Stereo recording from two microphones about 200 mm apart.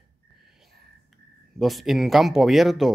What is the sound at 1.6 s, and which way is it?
Speech, centre (ahead or behind).